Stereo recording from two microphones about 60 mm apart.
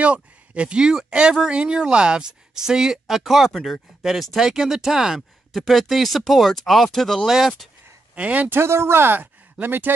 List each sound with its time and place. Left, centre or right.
0.0 s speech: centre
8.1 s speech: right
8.5 s speech: right